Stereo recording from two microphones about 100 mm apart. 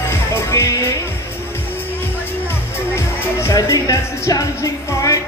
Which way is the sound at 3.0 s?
30° left (ahead or behind).